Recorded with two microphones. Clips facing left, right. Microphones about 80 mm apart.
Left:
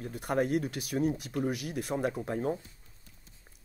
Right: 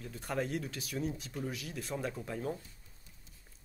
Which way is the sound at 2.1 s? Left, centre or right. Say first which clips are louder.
Left 6 dB; left.